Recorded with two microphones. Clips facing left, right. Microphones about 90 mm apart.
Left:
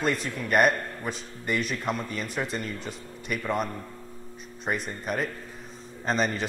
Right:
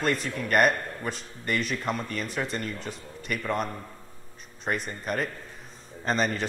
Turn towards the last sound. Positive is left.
turn(degrees=0)  # may be behind; listen again after turning